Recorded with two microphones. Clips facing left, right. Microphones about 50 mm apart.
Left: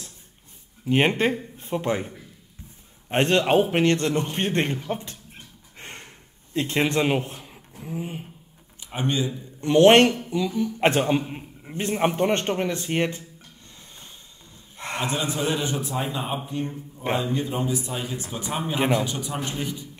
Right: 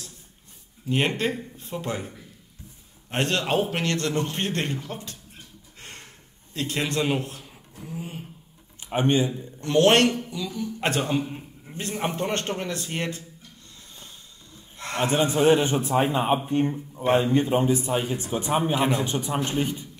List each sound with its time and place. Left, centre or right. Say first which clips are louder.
0.8 s a man's voice: left 4 dB; left
7.4 s a sound: left 3 dB; centre
8.8 s speech: right 4 dB; right
9.6 s a man's voice: left 4 dB; left
15.0 s a man's voice: right 5 dB; right